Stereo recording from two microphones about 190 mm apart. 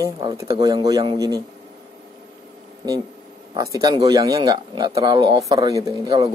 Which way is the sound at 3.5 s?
20° right (ahead or behind).